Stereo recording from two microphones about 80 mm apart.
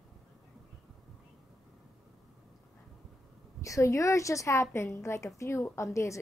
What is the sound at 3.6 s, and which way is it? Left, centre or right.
A woman's voice, left.